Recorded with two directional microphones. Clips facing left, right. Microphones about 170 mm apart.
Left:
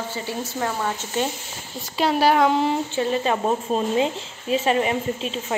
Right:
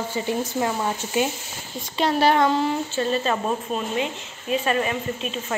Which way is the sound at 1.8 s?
5° left (ahead or behind).